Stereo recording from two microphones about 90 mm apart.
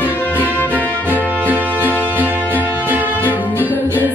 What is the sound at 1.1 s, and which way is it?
Music, 20° right (ahead or behind).